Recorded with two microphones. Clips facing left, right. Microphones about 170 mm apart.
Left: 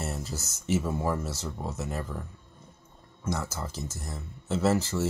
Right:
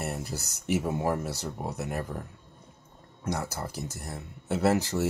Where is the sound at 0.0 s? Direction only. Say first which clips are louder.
Right 1 dB; 15° right (ahead or behind).